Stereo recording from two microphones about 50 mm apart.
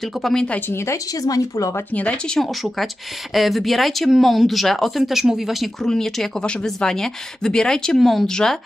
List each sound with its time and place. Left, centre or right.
0.2 s speech: centre
0.7 s a woman's voice: left
2.0 s speech: left
3.3 s speech: centre
5.9 s speech: centre
8.0 s speech: centre